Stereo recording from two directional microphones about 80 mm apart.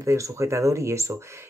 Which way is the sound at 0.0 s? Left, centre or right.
Right.